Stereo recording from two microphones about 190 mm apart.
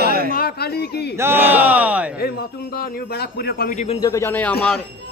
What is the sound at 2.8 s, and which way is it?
A man's voice, 55° left (ahead or behind).